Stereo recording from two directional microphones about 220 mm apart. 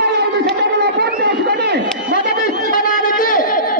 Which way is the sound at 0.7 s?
45° right (ahead or behind).